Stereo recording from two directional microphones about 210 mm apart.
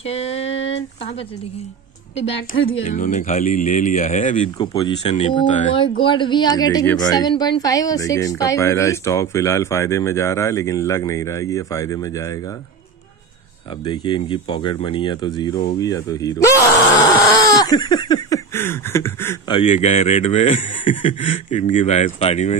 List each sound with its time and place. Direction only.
0.0 s a sound: 30° left (ahead or behind)
2.1 s speech: 30° left (ahead or behind)
4.6 s speech: 25° left (ahead or behind)
5.8 s speech: 25° left (ahead or behind)
13.8 s speech: 20° left (ahead or behind)
19.5 s speech: 30° left (ahead or behind)